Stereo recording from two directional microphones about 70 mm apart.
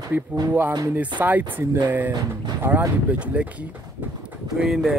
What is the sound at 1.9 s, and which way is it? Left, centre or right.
Speech, right.